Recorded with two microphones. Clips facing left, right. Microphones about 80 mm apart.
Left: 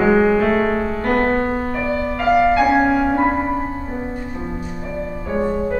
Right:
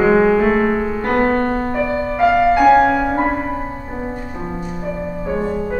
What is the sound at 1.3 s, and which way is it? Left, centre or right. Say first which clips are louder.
Music: right 2 dB; centre.